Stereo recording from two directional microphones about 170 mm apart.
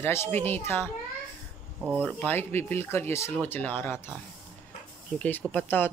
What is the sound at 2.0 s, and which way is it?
Speech, 10° left (ahead or behind).